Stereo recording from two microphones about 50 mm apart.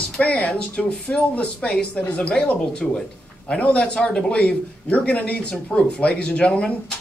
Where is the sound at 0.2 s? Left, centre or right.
Left.